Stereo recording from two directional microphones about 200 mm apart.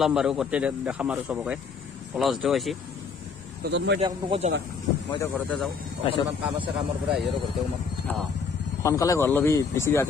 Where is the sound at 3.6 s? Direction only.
60° right (ahead or behind).